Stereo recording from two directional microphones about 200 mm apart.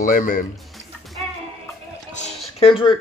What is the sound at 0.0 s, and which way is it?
Speech, 45° left (ahead or behind).